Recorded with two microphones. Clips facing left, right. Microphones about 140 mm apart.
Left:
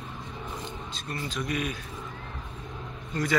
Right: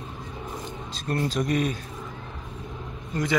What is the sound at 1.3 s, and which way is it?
Speech, 35° right (ahead or behind).